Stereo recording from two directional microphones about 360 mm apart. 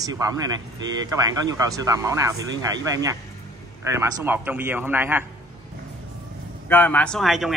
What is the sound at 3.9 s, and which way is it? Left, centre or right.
A man's voice, centre.